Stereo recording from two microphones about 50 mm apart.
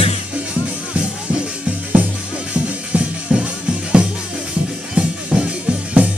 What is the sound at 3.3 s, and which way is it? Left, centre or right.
Music, centre.